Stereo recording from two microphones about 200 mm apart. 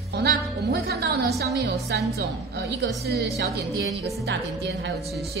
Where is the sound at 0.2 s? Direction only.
55° right (ahead or behind).